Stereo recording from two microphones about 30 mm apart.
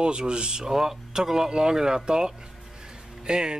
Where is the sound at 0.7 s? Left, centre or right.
Centre.